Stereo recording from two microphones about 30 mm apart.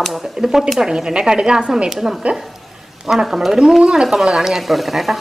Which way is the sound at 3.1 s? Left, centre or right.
Right.